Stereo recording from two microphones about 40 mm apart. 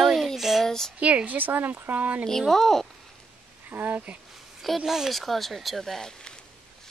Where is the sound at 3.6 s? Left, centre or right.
Right.